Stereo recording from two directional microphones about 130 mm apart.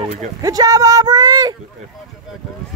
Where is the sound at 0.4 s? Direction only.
30° right (ahead or behind).